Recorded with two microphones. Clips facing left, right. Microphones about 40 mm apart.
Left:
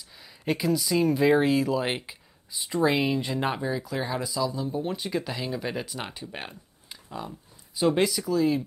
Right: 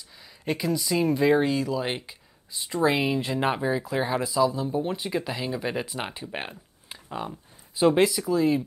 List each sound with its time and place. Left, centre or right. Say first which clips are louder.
0.2 s speech: left 1 dB; centre
2.5 s speech: even; centre